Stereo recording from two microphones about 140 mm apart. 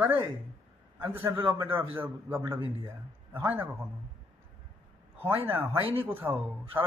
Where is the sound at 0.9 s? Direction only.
15° right (ahead or behind).